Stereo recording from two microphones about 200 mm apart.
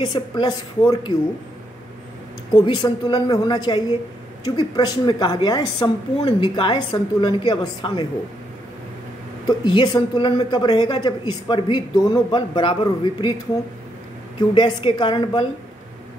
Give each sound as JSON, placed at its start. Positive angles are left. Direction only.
{"t": 0.0, "sound": "speech", "side_deg": 25}
{"t": 2.5, "sound": "speech", "side_deg": 20}
{"t": 9.5, "sound": "speech", "side_deg": 20}
{"t": 14.5, "sound": "speech", "side_deg": 25}